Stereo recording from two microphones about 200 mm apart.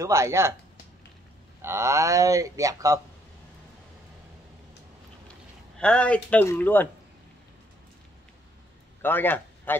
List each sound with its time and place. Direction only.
0.0 s speech: 15° right (ahead or behind)
1.6 s speech: 15° right (ahead or behind)
5.8 s speech: 5° left (ahead or behind)
9.0 s a man's voice: 10° left (ahead or behind)